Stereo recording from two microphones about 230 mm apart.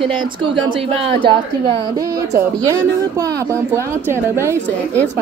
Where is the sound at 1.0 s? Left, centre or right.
Right.